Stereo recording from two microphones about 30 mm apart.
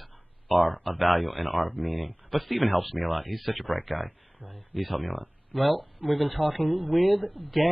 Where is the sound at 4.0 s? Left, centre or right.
Left.